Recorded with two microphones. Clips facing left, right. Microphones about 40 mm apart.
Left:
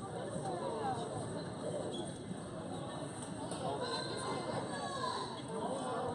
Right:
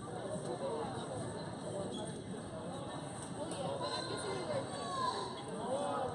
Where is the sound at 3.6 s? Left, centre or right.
Centre.